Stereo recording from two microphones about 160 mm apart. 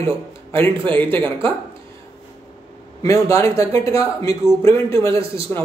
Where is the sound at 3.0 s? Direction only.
20° left (ahead or behind).